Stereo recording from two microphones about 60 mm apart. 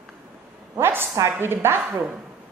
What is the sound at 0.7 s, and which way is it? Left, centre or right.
A woman's voice, right.